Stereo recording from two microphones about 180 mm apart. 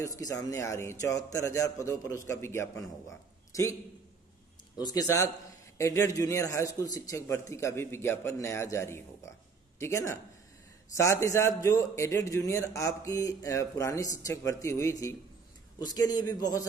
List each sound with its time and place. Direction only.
0.0 s a man's voice: 20° left (ahead or behind)
4.7 s a man's voice: 20° left (ahead or behind)